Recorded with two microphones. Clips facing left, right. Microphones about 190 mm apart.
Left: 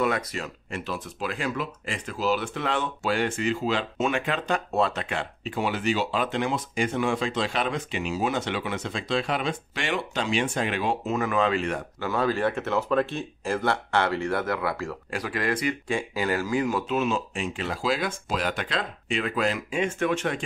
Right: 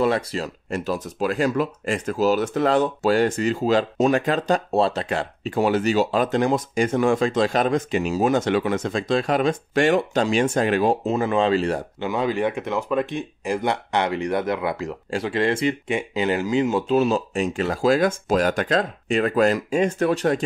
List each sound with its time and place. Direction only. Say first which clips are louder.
0.0 s speech: right 5 dB; 30° right (ahead or behind)
12.0 s speech: right 1 dB; 15° right (ahead or behind); by 20.4 s 40° right (ahead or behind)